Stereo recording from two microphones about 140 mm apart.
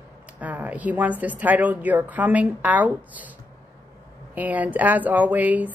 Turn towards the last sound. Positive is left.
turn(degrees=-10)  # may be behind; listen again after turning